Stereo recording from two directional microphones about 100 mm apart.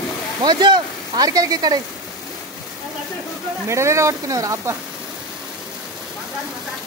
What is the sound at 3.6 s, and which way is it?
Speech, 30° right (ahead or behind).